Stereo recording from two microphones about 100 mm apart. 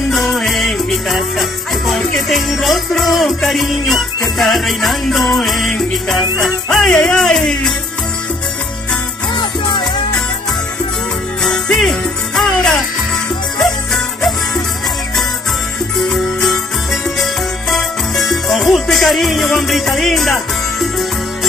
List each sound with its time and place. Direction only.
0.1 s music: centre (ahead or behind)
9.4 s music: 45° left (ahead or behind)
11.4 s music: 5° left (ahead or behind)
16.0 s music: centre (ahead or behind)